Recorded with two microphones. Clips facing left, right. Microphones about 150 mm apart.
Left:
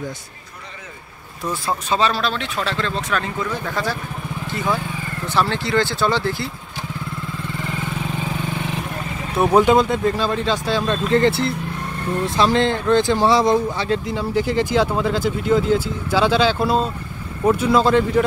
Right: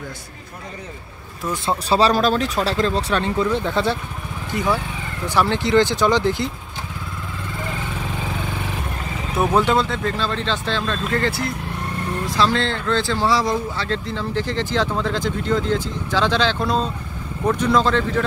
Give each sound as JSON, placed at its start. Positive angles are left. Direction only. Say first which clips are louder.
{"t": 1.9, "sound": "speech", "louder": "right 4 dB", "side_deg": -35}
{"t": 5.2, "sound": "speech", "louder": "right 2 dB", "side_deg": -15}
{"t": 9.5, "sound": "speech", "louder": "left 5 dB", "side_deg": 15}